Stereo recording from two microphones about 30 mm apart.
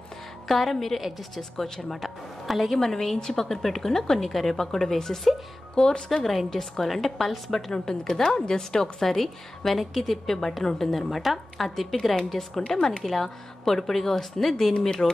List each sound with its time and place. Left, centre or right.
0.5 s a woman's voice: centre
2.7 s a woman's voice: centre
5.8 s a woman's voice: left
6.5 s a woman's voice: centre
7.7 s a woman's voice: left
9.0 s a woman's voice: centre
11.0 s a woman's voice: centre; by 15.0 s left